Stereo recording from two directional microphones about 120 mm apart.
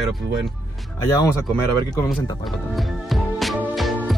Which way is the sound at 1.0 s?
30° left (ahead or behind).